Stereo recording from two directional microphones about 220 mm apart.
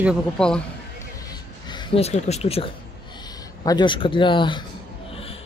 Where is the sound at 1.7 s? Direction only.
25° left (ahead or behind).